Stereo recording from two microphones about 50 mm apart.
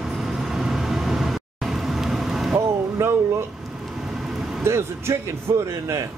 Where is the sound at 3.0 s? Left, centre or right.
Right.